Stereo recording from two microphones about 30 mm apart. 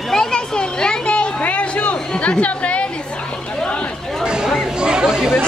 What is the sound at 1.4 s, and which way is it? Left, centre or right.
Chatter, left.